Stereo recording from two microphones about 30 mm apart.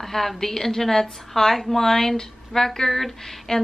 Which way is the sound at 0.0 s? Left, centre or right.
Centre.